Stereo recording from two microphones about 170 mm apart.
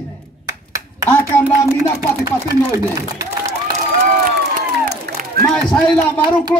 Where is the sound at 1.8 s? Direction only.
20° right (ahead or behind).